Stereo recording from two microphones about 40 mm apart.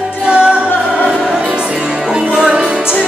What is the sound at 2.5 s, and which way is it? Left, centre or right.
Music, right.